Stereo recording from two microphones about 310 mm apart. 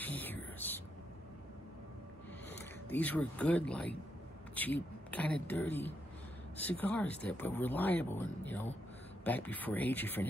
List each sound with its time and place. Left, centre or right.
0.0 s a sound: centre
2.9 s speech: centre
5.1 s speech: centre